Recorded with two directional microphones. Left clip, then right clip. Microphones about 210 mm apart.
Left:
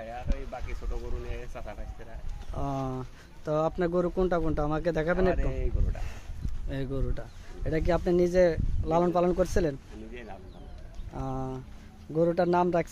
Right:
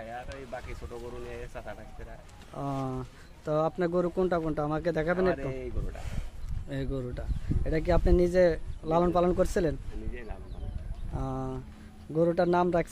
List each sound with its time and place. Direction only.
0.3 s a sound: 45° right (ahead or behind)
1.3 s speech: 5° right (ahead or behind)
6.7 s speech: 5° left (ahead or behind)
11.1 s speech: centre (ahead or behind)